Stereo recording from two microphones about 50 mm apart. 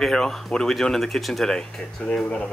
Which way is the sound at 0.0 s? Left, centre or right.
Centre.